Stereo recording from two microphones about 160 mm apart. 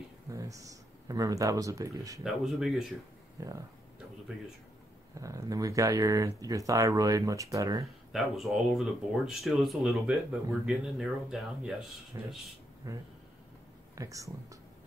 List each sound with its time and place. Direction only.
0.3 s speech: 20° right (ahead or behind)
2.2 s speech: centre (ahead or behind)
3.3 s speech: 20° right (ahead or behind)
5.2 s speech: 20° right (ahead or behind)
8.1 s speech: centre (ahead or behind)
12.1 s speech: 20° right (ahead or behind)